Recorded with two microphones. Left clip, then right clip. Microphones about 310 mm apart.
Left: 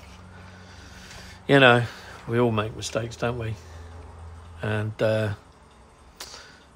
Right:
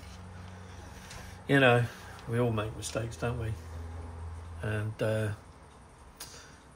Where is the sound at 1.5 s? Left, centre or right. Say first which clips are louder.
Left 8 dB; centre.